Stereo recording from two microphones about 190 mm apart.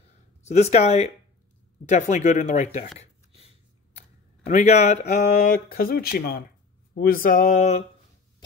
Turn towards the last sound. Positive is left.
turn(degrees=40)  # may be behind; listen again after turning